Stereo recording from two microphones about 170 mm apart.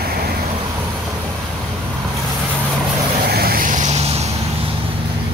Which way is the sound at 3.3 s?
60° right (ahead or behind).